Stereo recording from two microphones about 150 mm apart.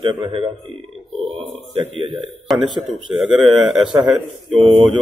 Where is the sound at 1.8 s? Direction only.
35° right (ahead or behind).